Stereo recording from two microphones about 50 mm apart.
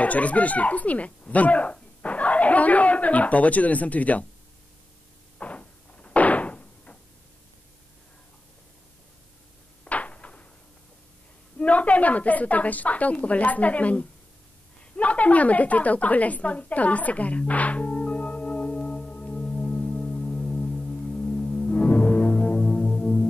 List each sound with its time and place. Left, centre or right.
0.0 s a woman's voice: left
5.4 s door: left
9.8 s a sound: left
11.5 s a woman's voice: left
15.0 s a sound: left
21.8 s music: left